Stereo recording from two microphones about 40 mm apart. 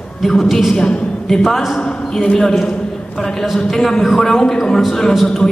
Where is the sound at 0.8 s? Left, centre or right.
Centre.